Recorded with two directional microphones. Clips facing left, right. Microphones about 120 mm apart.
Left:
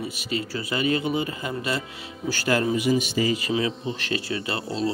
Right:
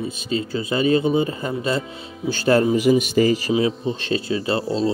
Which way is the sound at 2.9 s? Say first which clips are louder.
Right 6 dB; 50° right (ahead or behind).